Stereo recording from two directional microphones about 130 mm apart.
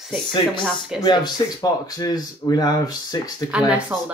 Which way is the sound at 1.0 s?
35° left (ahead or behind).